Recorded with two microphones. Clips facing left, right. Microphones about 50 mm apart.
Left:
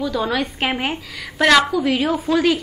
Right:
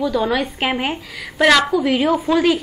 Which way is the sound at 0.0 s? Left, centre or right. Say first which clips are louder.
Right 2 dB; centre.